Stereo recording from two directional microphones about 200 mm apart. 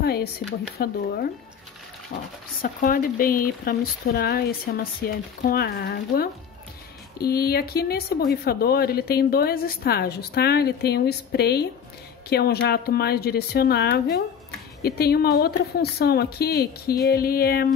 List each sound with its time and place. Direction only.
0.0 s speech: 50° left (ahead or behind)
2.1 s speech: 50° left (ahead or behind)